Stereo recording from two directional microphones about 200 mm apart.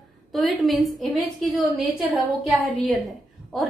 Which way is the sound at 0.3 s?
Centre (ahead or behind).